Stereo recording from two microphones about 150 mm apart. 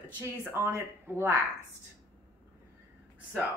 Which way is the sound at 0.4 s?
15° right (ahead or behind).